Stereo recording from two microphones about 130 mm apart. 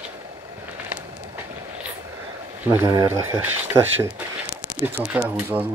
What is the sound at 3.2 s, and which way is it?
Speech, 15° right (ahead or behind).